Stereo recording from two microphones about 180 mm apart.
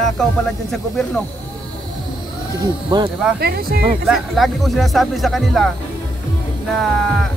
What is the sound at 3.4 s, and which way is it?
Speech, 55° right (ahead or behind).